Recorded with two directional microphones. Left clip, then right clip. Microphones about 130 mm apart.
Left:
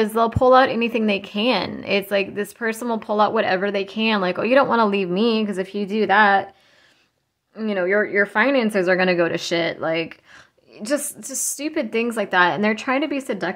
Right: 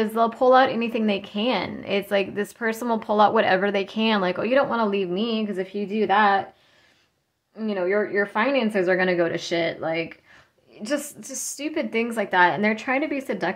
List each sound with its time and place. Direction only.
0.0 s a woman's voice: 25° left (ahead or behind)
4.5 s a woman's voice: 35° left (ahead or behind)
7.5 s a woman's voice: 35° left (ahead or behind)